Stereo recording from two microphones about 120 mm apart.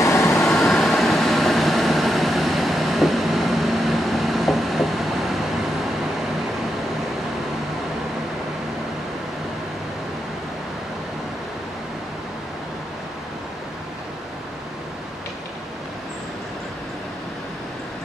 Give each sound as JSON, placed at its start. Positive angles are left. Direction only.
{"t": 0.0, "sound": "train", "side_deg": 25}
{"t": 0.4, "sound": "vehicle", "side_deg": 0}